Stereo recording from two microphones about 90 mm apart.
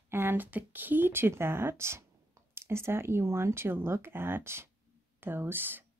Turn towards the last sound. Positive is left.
turn(degrees=-25)  # may be behind; listen again after turning